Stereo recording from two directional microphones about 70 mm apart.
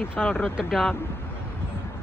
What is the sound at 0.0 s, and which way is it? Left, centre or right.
Speech, left.